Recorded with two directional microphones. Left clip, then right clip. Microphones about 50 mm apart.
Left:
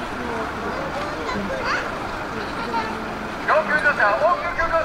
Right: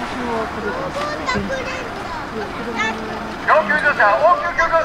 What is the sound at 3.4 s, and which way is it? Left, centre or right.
Vehicle, right.